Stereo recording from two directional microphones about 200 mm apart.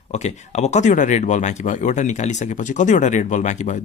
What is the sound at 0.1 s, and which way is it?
Speech, 35° left (ahead or behind).